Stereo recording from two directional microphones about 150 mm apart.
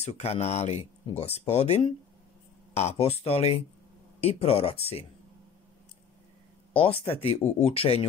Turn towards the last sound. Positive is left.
turn(degrees=40)  # may be behind; listen again after turning